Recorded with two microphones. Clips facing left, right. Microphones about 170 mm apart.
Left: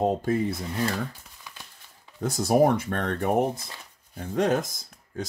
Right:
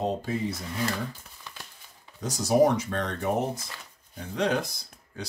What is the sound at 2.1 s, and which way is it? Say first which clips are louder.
Speech: left 1 dB; 55° left (ahead or behind).